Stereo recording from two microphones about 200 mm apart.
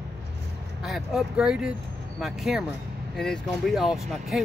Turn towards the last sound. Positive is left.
turn(degrees=0)  # may be behind; listen again after turning